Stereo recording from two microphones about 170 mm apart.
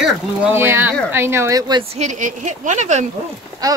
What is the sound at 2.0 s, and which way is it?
Speech, 45° right (ahead or behind).